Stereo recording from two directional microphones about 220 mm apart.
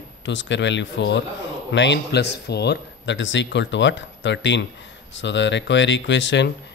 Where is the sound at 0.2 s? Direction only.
55° left (ahead or behind).